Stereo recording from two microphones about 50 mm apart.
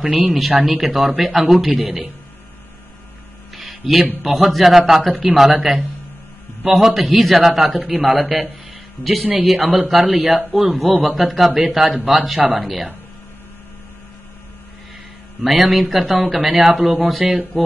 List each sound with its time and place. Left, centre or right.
0.6 s a man's voice: centre
3.5 s a sound: centre
4.2 s a man's voice: centre
9.2 s speech: right
9.7 s a man's voice: centre
15.4 s a man's voice: centre
17.2 s speech: centre